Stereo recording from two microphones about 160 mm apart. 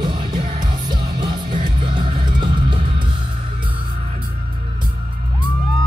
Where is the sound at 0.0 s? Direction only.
30° right (ahead or behind).